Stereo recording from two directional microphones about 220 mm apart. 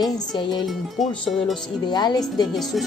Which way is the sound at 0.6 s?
Centre (ahead or behind).